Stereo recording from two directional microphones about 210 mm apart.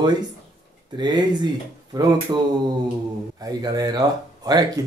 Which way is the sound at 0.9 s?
20° right (ahead or behind).